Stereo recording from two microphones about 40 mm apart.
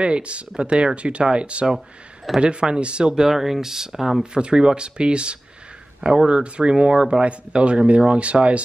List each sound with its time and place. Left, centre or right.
0.0 s speech: right
3.3 s speech: centre
4.2 s speech: right